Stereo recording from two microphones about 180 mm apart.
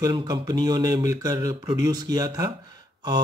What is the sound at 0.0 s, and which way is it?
Mantra, 20° right (ahead or behind).